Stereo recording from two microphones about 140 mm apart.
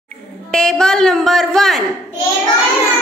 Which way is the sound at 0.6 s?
5° left (ahead or behind).